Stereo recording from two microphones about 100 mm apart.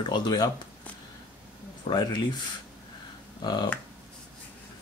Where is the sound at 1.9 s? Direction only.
50° left (ahead or behind).